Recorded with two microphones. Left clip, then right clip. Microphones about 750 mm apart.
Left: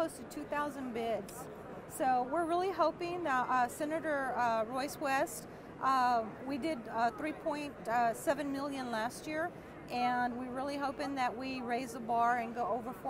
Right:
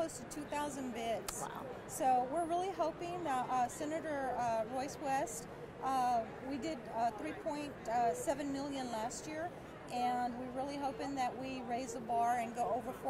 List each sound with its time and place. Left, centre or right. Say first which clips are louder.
0.0 s vehicle: left 3 dB; left
2.0 s speech: left 1 dB; left